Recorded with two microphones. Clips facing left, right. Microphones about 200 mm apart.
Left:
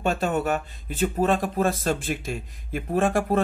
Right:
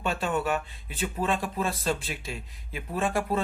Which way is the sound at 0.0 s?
45° left (ahead or behind).